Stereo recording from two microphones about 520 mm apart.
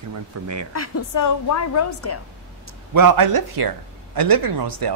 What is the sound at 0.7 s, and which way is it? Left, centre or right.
A woman's voice, left.